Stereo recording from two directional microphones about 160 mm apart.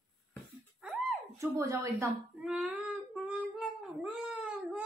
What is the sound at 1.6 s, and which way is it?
Speech, 20° right (ahead or behind).